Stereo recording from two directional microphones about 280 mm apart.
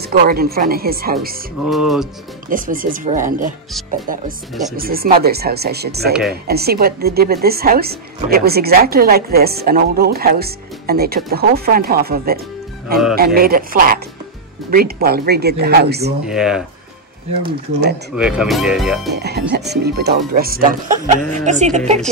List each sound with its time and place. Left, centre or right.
0.0 s speech: right
1.7 s speech: centre
2.5 s speech: right
4.7 s speech: right
16.3 s speech: centre
17.5 s speech: right
18.1 s speech: centre
19.1 s music: right
19.5 s speech: right